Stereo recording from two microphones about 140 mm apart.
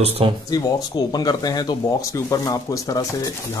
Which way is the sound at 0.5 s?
30° left (ahead or behind).